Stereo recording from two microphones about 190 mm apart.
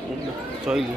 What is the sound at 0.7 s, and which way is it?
Speech, 5° right (ahead or behind).